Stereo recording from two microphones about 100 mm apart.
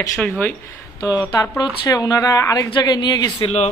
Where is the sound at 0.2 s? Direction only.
15° left (ahead or behind).